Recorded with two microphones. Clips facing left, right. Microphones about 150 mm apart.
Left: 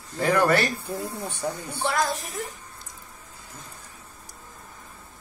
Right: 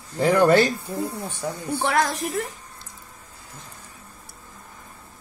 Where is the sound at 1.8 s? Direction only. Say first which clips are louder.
Right 3 dB; 70° right (ahead or behind); by 2.4 s 90° right.